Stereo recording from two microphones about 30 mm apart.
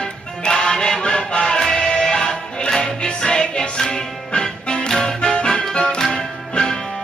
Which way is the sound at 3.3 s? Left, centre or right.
Left.